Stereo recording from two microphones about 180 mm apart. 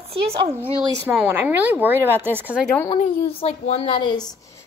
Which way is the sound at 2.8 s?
30° left (ahead or behind).